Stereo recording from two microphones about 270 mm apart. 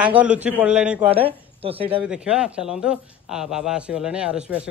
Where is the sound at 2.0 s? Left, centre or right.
Centre.